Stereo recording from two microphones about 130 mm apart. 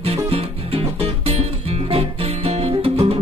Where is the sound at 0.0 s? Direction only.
45° right (ahead or behind).